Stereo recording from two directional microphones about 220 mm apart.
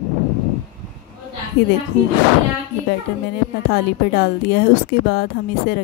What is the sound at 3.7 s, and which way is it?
Speech, 50° left (ahead or behind).